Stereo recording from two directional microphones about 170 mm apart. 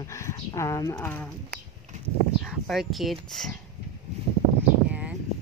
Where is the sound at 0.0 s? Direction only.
15° left (ahead or behind).